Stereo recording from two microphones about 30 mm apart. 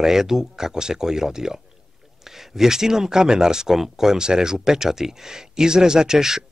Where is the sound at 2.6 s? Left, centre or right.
Centre.